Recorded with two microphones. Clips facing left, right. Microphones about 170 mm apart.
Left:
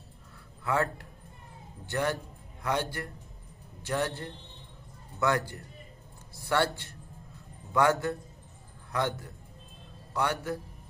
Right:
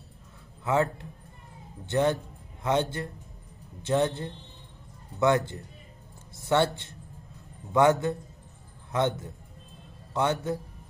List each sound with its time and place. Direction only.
0.7 s speech: 20° right (ahead or behind)